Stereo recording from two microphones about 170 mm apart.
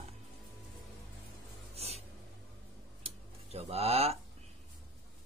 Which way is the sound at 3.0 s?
35° right (ahead or behind).